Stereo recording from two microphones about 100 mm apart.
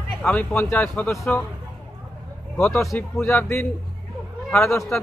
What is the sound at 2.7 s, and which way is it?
Speech, centre (ahead or behind).